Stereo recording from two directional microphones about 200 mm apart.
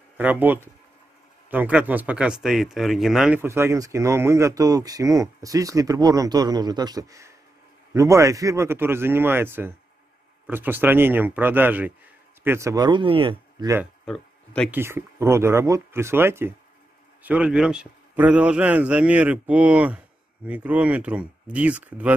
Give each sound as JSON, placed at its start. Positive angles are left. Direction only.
{"t": 0.2, "sound": "speech", "side_deg": -10}
{"t": 14.0, "sound": "a sound", "side_deg": 5}
{"t": 14.7, "sound": "speech", "side_deg": -10}